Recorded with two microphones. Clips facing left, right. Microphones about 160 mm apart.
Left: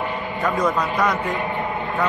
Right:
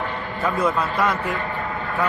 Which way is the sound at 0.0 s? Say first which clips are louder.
Left 1 dB; 10° left (ahead or behind).